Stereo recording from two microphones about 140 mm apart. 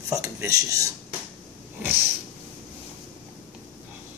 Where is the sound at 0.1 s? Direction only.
20° right (ahead or behind).